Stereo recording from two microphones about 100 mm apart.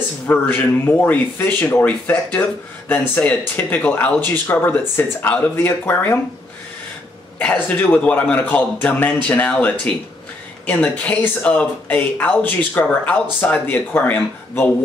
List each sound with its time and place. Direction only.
0.3 s speech: 20° left (ahead or behind)
7.3 s speech: 15° left (ahead or behind)